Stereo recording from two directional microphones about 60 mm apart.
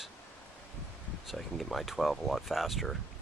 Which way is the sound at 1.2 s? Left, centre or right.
Centre.